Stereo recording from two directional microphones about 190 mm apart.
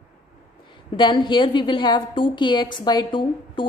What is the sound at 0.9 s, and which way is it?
A woman's voice, 25° left (ahead or behind).